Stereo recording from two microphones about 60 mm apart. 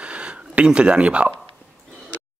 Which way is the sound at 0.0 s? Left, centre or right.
Centre.